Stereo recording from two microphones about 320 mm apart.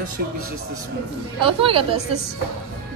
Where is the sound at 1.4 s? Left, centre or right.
Centre.